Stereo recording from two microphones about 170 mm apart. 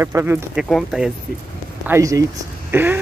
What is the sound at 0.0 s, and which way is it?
Speech, 15° right (ahead or behind).